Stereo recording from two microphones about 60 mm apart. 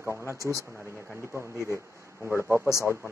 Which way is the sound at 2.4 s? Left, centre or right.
Right.